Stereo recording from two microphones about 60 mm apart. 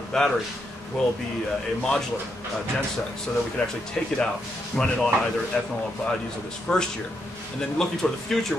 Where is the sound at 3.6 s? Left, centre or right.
Centre.